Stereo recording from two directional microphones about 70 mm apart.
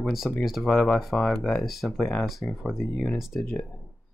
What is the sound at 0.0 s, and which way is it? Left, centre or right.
Speech, centre.